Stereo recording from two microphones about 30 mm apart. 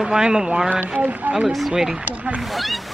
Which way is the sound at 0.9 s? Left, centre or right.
Right.